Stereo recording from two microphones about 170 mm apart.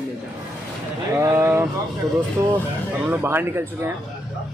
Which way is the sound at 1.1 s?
15° right (ahead or behind).